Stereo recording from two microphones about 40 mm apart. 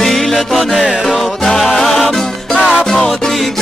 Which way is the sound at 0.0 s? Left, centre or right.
Centre.